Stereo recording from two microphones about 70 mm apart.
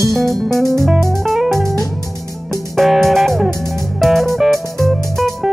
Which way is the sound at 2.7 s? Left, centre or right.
Centre.